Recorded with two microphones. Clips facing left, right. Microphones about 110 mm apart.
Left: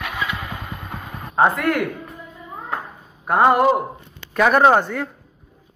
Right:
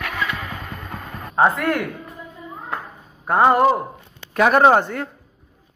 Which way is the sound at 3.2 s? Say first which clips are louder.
Even; 5° left (ahead or behind).